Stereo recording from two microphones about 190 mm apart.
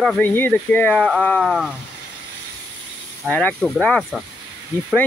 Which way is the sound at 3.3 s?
5° left (ahead or behind).